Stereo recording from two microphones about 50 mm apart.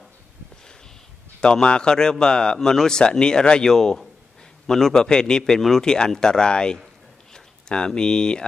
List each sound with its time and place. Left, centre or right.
1.4 s speech: centre